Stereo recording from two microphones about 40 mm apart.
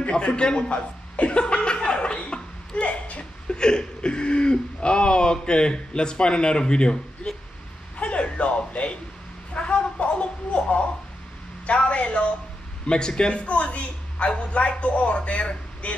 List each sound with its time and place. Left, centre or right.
0.1 s a man's voice: left
0.7 s laughter: left
8.0 s a sound: left
11.6 s a man's voice: left
12.8 s a man's voice: left